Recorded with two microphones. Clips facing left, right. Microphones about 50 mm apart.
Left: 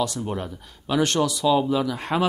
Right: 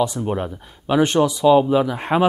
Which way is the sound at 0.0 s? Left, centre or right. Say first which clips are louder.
Right 5 dB; centre.